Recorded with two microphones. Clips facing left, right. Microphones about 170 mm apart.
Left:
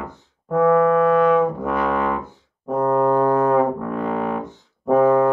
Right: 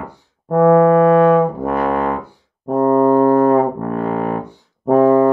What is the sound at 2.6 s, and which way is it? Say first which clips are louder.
Music: right 5 dB; 35° right (ahead or behind).